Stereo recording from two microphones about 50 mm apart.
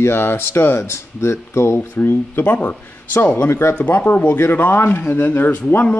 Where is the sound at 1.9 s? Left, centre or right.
Left.